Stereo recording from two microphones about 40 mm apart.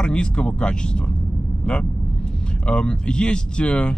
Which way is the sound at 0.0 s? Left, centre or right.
Left.